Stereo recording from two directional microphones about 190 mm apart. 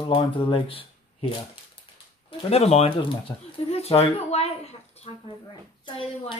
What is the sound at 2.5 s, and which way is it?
Speech, 30° left (ahead or behind).